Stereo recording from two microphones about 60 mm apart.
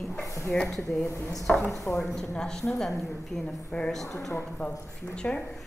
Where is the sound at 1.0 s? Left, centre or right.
Left.